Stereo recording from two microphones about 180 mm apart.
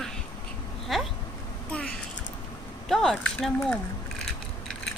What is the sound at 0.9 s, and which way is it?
Insect, centre (ahead or behind).